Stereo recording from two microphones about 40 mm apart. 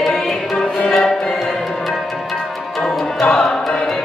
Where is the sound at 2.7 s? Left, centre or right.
Centre.